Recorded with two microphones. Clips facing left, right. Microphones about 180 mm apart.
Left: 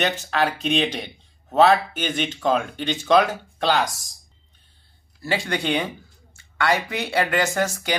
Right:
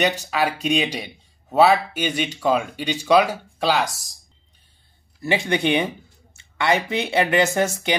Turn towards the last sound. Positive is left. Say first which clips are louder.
# right 2 dB
turn(degrees=-20)  # may be behind; listen again after turning